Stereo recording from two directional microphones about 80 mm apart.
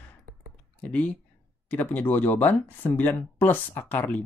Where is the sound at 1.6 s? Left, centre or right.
Left.